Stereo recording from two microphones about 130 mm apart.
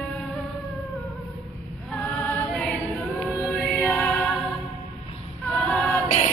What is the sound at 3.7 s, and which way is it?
Music, 5° left (ahead or behind).